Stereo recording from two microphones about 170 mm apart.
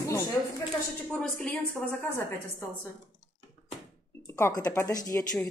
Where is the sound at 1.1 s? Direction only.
5° left (ahead or behind).